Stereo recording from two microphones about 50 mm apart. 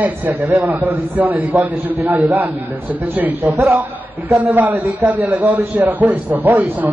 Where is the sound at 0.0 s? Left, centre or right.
Right.